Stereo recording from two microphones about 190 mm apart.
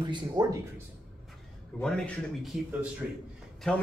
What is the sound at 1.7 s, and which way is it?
A man's voice, centre (ahead or behind).